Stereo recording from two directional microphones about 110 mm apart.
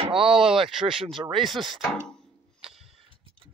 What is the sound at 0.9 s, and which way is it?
Speech, 55° right (ahead or behind).